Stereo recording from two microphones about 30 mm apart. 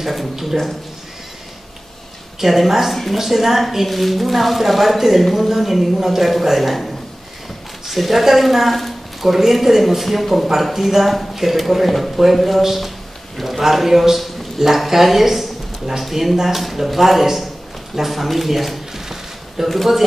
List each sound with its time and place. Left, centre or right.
0.0 s a man's voice: centre
2.4 s a woman's voice: centre